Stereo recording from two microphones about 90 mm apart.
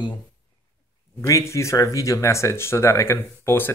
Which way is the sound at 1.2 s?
35° left (ahead or behind).